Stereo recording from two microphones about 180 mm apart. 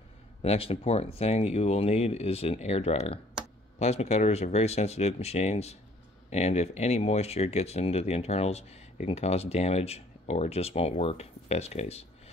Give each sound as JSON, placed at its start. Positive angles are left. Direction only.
{"t": 0.4, "sound": "speech", "side_deg": 35}